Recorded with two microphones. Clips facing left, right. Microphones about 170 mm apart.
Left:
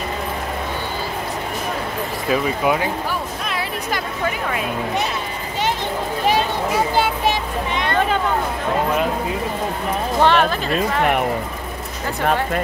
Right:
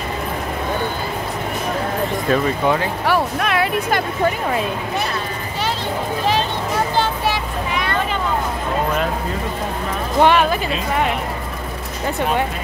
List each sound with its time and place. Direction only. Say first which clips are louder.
2.2 s speech: even; 10° left (ahead or behind)
3.1 s a sound: right 7 dB; 70° right (ahead or behind)
7.0 s vehicle: left 1 dB; 20° left (ahead or behind)
10.2 s speech: right 2 dB; 10° right (ahead or behind)